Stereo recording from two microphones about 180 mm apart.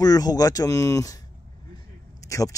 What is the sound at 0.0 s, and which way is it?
Speech, 20° left (ahead or behind).